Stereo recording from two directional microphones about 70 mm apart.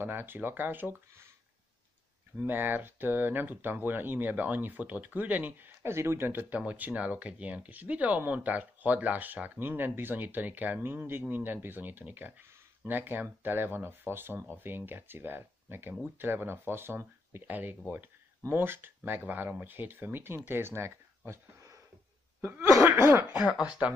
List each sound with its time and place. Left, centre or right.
0.0 s speech: right
2.3 s speech: right
5.9 s speech: right
22.9 s speech: right
23.2 s speech: centre